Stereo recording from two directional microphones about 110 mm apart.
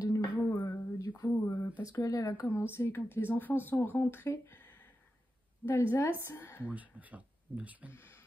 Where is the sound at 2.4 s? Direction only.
20° left (ahead or behind).